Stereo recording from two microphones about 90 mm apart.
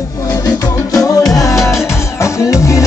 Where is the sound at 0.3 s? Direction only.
45° left (ahead or behind).